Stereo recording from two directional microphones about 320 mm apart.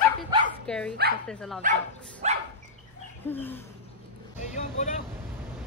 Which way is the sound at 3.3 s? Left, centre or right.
Centre.